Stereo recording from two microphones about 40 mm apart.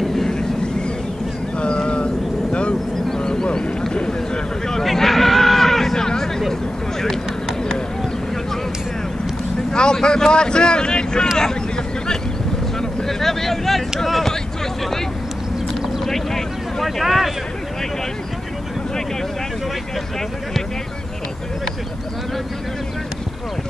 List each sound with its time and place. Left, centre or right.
0.0 s vehicle: centre
0.3 s vehicle: centre
1.6 s a sound: left
3.1 s vehicle: centre
3.9 s a sound: left
4.8 s hubbub: centre
9.7 s speech: centre
11.3 s a sound: centre
16.1 s vehicle: centre
16.8 s speech: centre